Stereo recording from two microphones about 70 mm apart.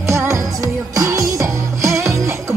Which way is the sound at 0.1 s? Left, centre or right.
Right.